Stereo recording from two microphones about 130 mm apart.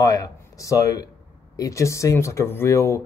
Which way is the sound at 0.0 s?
25° left (ahead or behind).